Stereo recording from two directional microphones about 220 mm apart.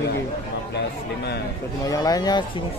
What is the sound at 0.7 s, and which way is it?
Speech, 50° left (ahead or behind).